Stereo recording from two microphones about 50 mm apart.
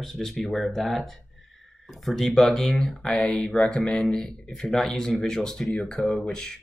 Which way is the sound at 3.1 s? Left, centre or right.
Centre.